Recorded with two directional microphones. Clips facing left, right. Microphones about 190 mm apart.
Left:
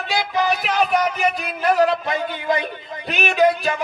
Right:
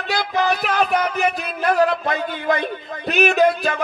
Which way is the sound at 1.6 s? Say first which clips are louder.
Even; 45° right (ahead or behind).